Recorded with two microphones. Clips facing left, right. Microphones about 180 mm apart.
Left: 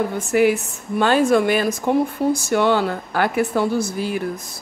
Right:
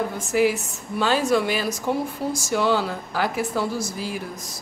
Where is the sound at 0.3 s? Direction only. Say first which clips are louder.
Left 4 dB; 60° left (ahead or behind).